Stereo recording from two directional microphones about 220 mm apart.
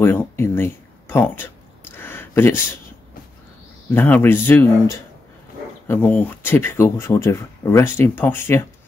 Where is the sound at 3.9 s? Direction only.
10° left (ahead or behind).